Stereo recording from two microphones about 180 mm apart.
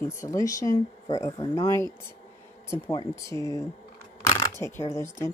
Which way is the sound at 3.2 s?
15° left (ahead or behind).